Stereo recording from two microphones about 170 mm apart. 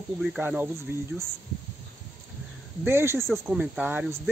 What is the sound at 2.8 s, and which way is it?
Speech, 15° right (ahead or behind).